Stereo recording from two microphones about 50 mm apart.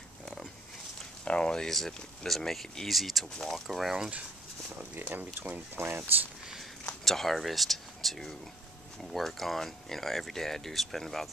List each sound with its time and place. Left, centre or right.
1.2 s a sound: centre
1.7 s speech: centre
5.8 s speech: right
7.1 s speech: centre